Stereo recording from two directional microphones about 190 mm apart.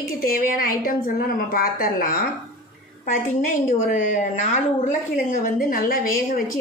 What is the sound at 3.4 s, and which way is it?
A woman's voice, 40° left (ahead or behind).